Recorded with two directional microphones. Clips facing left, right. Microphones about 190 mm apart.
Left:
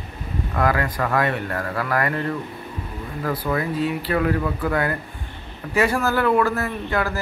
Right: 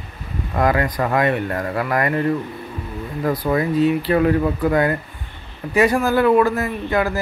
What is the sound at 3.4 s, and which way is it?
Speech, 20° right (ahead or behind).